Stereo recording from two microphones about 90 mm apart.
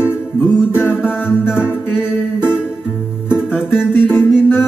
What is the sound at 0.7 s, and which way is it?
Music, 10° right (ahead or behind).